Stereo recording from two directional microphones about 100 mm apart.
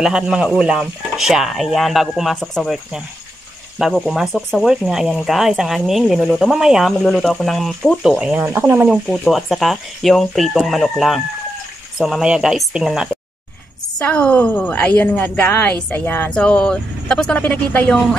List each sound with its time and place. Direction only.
0.0 s speech: 5° right (ahead or behind)
8.8 s speech: centre (ahead or behind)
13.9 s a woman's voice: 10° left (ahead or behind)